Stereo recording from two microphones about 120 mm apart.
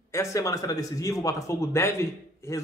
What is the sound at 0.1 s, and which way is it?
A man's voice, 25° left (ahead or behind).